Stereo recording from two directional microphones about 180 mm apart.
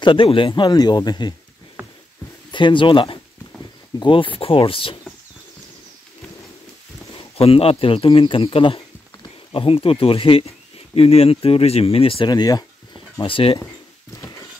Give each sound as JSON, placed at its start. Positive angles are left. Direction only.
{"t": 0.0, "sound": "speech", "side_deg": 30}
{"t": 2.5, "sound": "speech", "side_deg": 25}
{"t": 7.3, "sound": "speech", "side_deg": 35}